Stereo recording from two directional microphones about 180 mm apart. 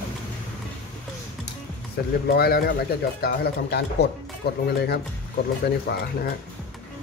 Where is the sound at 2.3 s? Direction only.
60° left (ahead or behind).